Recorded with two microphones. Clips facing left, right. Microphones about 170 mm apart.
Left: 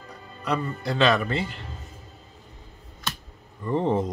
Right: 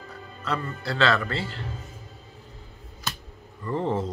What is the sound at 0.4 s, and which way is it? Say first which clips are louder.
Speech: left 3 dB; 15° left (ahead or behind).